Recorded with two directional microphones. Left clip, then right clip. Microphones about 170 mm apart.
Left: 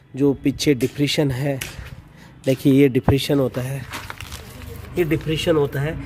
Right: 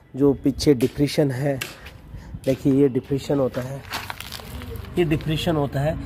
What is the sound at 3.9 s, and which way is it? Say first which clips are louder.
Crumpling: right 2 dB; 55° right (ahead or behind).